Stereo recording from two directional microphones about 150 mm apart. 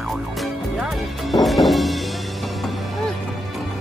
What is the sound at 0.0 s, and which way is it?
Music, centre (ahead or behind).